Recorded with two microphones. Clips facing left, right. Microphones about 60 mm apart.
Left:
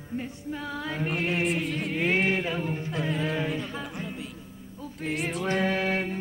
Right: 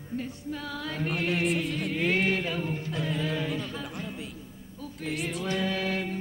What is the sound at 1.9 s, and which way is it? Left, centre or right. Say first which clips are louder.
Music: left 1 dB; centre.